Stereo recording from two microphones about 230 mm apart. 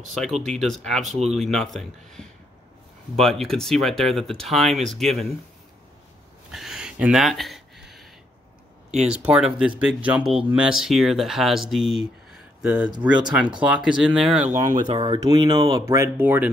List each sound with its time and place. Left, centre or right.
0.1 s speech: centre
6.5 s a sound: centre
9.1 s speech: centre
14.8 s speech: right